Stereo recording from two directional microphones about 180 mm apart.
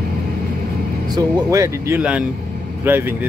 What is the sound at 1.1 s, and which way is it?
Speech, 20° right (ahead or behind).